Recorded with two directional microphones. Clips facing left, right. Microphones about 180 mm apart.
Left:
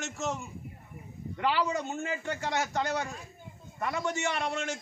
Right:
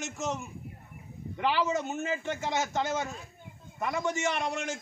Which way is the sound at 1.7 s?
20° right (ahead or behind).